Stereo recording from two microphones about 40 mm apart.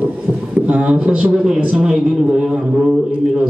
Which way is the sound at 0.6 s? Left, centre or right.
Right.